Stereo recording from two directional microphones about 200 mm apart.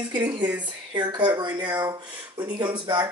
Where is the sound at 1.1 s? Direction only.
20° right (ahead or behind).